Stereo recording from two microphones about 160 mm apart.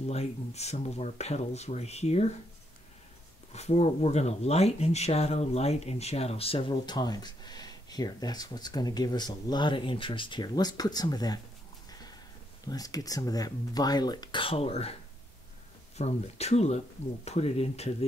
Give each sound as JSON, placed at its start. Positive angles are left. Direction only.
{"t": 0.0, "sound": "speech", "side_deg": 40}
{"t": 3.5, "sound": "speech", "side_deg": 45}
{"t": 12.6, "sound": "speech", "side_deg": 25}
{"t": 16.0, "sound": "speech", "side_deg": 40}